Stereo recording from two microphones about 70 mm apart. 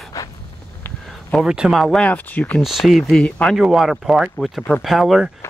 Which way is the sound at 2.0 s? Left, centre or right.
Left.